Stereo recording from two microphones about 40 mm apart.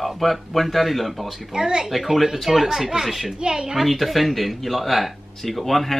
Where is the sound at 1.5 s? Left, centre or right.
Centre.